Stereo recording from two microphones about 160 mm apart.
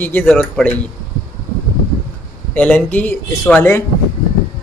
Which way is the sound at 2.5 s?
10° left (ahead or behind).